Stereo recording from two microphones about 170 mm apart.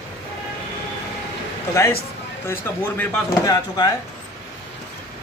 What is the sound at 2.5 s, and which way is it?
Speech, 15° left (ahead or behind).